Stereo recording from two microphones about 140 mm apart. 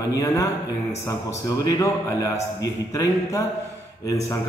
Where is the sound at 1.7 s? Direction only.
25° left (ahead or behind).